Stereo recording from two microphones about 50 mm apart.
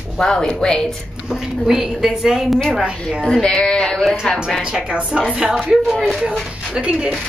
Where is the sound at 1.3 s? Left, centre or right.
Centre.